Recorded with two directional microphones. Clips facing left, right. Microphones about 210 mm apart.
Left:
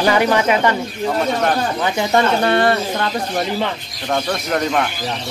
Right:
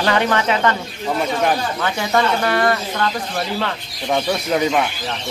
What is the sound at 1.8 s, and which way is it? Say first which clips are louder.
Speech: left 2 dB; 25° left (ahead or behind).